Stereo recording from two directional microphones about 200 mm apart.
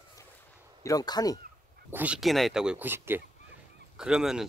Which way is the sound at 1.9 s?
5° right (ahead or behind).